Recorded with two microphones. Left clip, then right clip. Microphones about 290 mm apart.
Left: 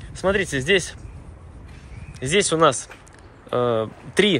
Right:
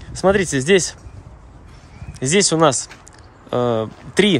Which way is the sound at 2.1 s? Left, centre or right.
Centre.